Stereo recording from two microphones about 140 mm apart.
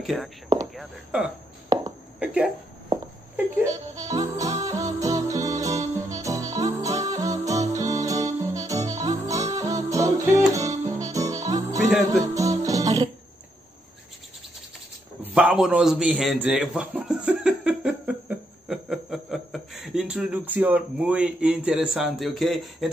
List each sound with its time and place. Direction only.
0.0 s speech: centre (ahead or behind)
1.7 s a sound: 25° right (ahead or behind)
2.1 s speech: 10° right (ahead or behind)
3.3 s speech: 20° right (ahead or behind)
4.4 s music: 25° right (ahead or behind)
15.2 s a man's voice: 10° right (ahead or behind)